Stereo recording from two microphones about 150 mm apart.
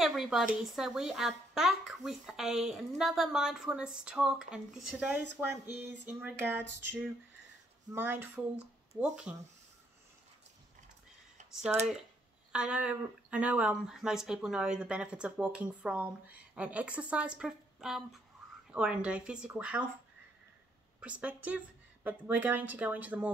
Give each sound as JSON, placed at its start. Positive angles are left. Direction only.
{"t": 0.0, "sound": "a woman's voice", "side_deg": 0}
{"t": 11.7, "sound": "a woman's voice", "side_deg": -5}
{"t": 21.0, "sound": "speech", "side_deg": -10}